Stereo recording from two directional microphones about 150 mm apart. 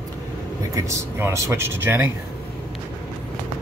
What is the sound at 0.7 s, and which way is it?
Speech, 20° right (ahead or behind).